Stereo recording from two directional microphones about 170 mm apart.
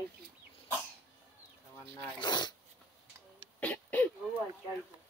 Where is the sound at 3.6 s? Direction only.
10° left (ahead or behind).